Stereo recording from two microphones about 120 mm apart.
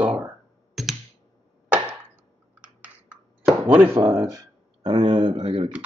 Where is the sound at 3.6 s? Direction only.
15° right (ahead or behind).